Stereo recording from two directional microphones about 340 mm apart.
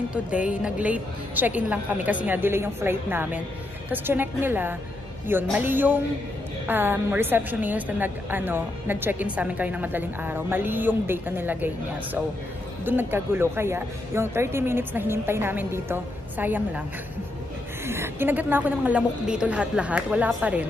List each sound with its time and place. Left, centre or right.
0.1 s a woman's voice: centre
17.8 s a woman's voice: centre